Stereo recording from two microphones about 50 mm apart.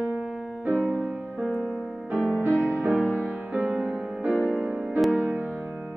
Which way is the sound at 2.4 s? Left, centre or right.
Right.